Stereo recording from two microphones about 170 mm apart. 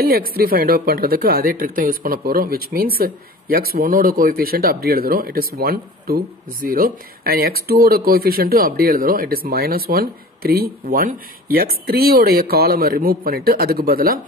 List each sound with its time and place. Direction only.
0.0 s speech: 60° right (ahead or behind)